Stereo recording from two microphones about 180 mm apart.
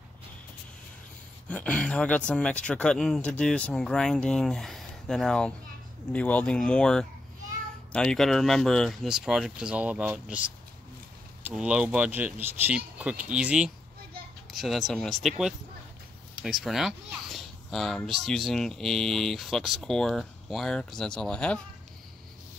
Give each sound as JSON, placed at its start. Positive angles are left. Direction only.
{"t": 1.5, "sound": "a child's voice", "side_deg": 5}